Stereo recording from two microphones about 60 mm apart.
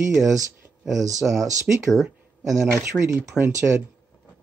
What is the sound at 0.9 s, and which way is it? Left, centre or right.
Speech, right.